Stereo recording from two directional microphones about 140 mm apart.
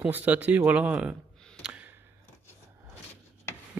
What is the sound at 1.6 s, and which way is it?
Clicking, 10° right (ahead or behind).